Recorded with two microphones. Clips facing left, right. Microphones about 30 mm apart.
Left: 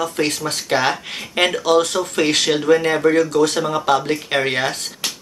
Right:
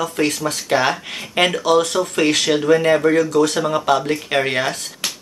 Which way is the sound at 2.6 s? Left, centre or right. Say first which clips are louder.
Right 1 dB; centre.